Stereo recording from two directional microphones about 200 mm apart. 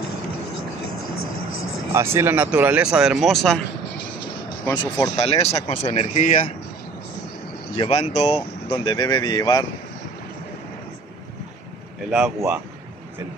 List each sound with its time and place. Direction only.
2.0 s speech: 10° right (ahead or behind)
4.6 s speech: 20° left (ahead or behind); by 6.5 s 40° left (ahead or behind)
7.7 s speech: 30° left (ahead or behind)
12.4 s speech: 10° right (ahead or behind)